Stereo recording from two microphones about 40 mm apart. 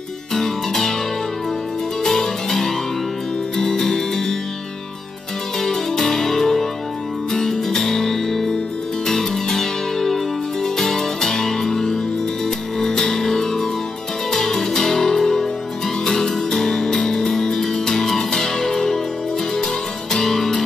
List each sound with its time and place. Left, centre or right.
0.3 s music: centre
2.0 s music: centre
5.6 s music: centre